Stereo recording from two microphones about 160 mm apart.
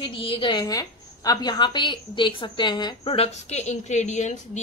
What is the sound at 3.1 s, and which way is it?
A woman's voice, 40° left (ahead or behind).